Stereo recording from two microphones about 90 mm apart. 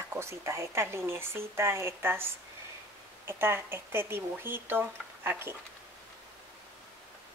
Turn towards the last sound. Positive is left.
turn(degrees=-25)  # may be behind; listen again after turning